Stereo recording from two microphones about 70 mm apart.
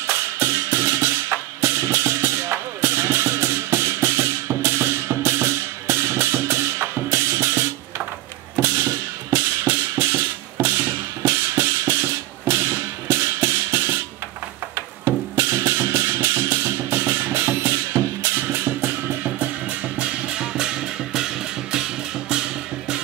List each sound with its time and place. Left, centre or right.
0.0 s music: right
8.6 s music: right
15.0 s music: right
19.4 s music: centre